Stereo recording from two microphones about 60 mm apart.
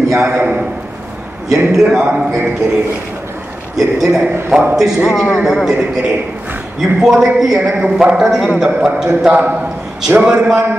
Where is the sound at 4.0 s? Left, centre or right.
Centre.